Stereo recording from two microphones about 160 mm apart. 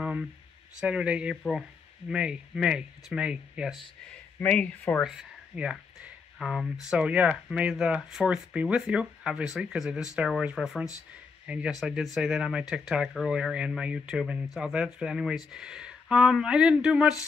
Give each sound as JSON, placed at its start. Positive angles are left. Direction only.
{"t": 0.0, "sound": "a sound", "side_deg": -5}
{"t": 0.7, "sound": "speech", "side_deg": -5}
{"t": 4.4, "sound": "speech", "side_deg": 10}
{"t": 5.0, "sound": "speech", "side_deg": -5}